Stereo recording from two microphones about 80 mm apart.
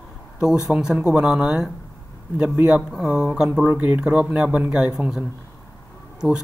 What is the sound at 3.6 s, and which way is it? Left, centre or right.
Speech, right.